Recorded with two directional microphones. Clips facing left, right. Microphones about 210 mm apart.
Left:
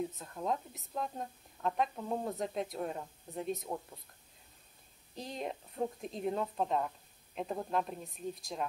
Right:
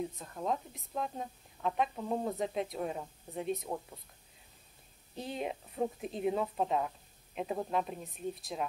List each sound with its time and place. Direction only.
0.0 s a woman's voice: centre (ahead or behind)
5.1 s a woman's voice: 5° right (ahead or behind)